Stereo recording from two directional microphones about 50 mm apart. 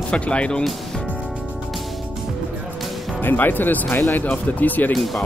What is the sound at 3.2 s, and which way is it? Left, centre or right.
Speech, left.